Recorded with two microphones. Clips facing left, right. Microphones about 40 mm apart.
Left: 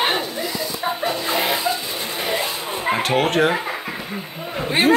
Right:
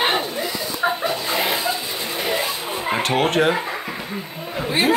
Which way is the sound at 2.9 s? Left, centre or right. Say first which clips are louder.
Even; centre.